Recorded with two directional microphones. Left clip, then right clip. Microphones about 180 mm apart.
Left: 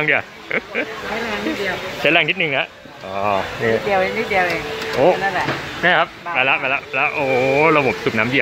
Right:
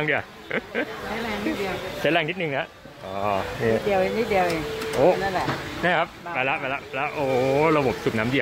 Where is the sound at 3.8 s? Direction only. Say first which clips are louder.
Left 4 dB; 60° right (ahead or behind).